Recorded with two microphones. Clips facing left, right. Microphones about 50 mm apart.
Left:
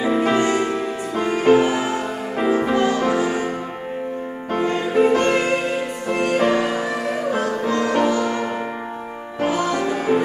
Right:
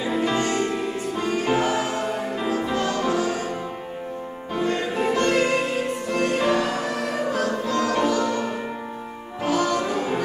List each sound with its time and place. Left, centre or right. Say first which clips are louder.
0.0 s music: left 5 dB; left
4.6 s music: left 5 dB; left
9.5 s music: even; left